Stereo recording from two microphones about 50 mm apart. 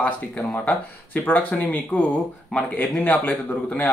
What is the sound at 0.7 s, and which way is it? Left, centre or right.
Speech, left.